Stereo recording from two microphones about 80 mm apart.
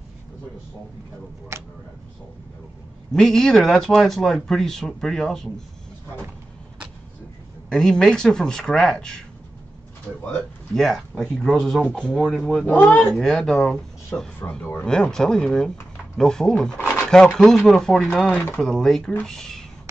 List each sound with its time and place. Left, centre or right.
1.5 s speech: right
3.1 s speech: centre
7.7 s speech: centre
10.7 s speech: centre
12.6 s speech: left
13.1 s speech: centre